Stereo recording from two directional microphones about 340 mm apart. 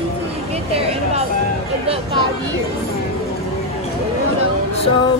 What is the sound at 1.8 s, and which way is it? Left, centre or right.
Speech, centre.